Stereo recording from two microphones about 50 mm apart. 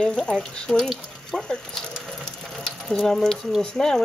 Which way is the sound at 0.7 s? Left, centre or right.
Centre.